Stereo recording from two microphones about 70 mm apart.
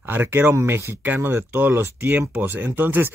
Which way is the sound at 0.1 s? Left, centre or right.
Right.